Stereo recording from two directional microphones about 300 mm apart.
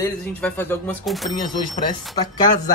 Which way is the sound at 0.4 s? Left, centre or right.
Centre.